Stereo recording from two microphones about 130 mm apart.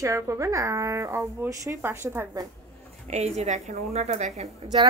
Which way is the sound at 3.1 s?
60° right (ahead or behind).